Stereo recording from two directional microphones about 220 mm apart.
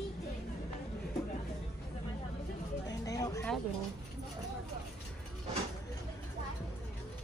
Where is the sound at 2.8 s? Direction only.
15° left (ahead or behind).